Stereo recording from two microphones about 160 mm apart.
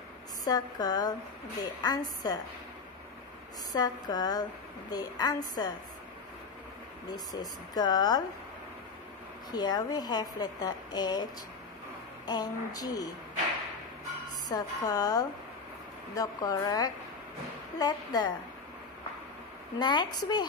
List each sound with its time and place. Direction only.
0.5 s a woman's voice: 25° left (ahead or behind)
3.7 s a woman's voice: 25° left (ahead or behind)
7.1 s a woman's voice: 25° left (ahead or behind)
9.5 s a woman's voice: 25° left (ahead or behind)
12.3 s a woman's voice: 25° left (ahead or behind)
14.2 s a woman's voice: 25° left (ahead or behind)
19.8 s a woman's voice: 30° left (ahead or behind)